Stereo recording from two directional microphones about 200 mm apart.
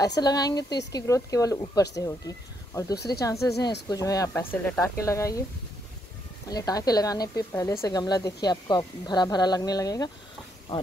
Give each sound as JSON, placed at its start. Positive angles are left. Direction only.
{"t": 0.0, "sound": "speech", "side_deg": 20}
{"t": 6.5, "sound": "speech", "side_deg": 20}